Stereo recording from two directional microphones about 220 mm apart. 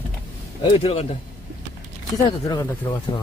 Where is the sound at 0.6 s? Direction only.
25° left (ahead or behind).